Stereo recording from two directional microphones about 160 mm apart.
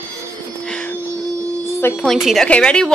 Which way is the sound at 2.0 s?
Centre (ahead or behind).